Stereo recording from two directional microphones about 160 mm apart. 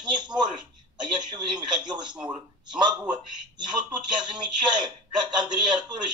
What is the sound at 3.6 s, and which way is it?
Speech, 30° right (ahead or behind).